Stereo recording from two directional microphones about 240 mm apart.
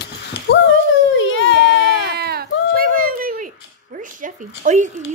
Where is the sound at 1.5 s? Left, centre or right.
Right.